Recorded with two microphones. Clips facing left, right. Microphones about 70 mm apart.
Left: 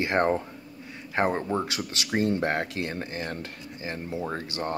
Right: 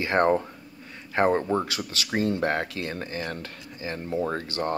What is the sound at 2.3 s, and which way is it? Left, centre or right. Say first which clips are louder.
Speech: right 1 dB; left.